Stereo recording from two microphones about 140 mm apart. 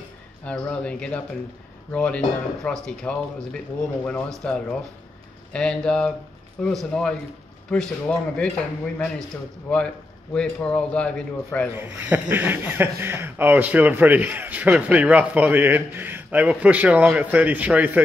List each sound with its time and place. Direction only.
0.5 s speech: 10° left (ahead or behind)
9.7 s speech: 10° left (ahead or behind)
11.7 s a man's voice: 15° right (ahead or behind)